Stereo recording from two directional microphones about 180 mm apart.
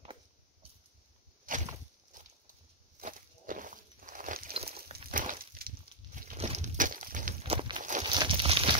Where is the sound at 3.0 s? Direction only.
45° right (ahead or behind).